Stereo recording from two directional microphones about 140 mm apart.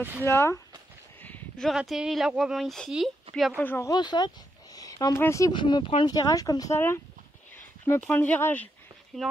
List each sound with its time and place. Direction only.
0.2 s speech: 15° left (ahead or behind)
1.2 s a sound: 15° left (ahead or behind)
1.7 s speech: centre (ahead or behind)
3.6 s speech: 15° left (ahead or behind)
3.9 s speech: 30° left (ahead or behind)
4.7 s a sound: 25° left (ahead or behind)
5.2 s speech: 20° left (ahead or behind)
5.5 s speech: 35° left (ahead or behind)
6.1 s speech: 25° left (ahead or behind)
9.1 s speech: centre (ahead or behind)